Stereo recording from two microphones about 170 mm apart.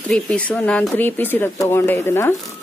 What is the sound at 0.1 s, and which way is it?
Speech, 5° left (ahead or behind).